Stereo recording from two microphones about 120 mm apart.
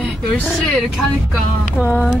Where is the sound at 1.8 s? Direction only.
15° left (ahead or behind).